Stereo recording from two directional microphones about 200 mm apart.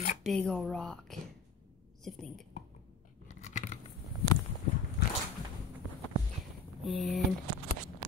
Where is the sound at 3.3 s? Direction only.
35° left (ahead or behind).